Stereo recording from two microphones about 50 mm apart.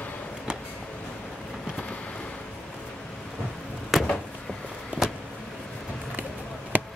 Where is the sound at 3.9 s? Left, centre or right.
Centre.